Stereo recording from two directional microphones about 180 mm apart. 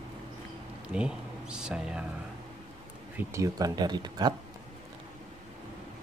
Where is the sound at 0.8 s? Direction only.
5° right (ahead or behind).